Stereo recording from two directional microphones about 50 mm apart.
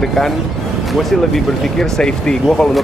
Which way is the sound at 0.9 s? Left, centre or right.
Centre.